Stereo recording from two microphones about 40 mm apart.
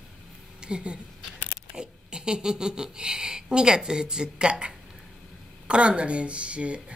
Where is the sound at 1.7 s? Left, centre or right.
Right.